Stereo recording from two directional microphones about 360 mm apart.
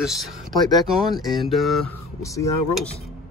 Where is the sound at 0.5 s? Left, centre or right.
Centre.